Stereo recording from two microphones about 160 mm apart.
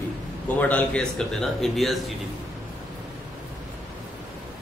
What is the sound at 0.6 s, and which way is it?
A man's voice, 10° left (ahead or behind).